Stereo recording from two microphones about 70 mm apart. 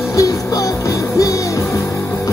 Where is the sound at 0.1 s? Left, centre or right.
Left.